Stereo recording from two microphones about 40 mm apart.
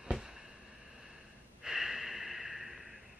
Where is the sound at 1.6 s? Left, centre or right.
Centre.